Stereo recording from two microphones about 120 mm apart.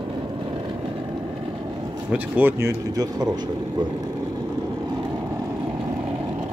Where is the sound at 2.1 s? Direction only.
15° right (ahead or behind); by 3.4 s 35° right (ahead or behind).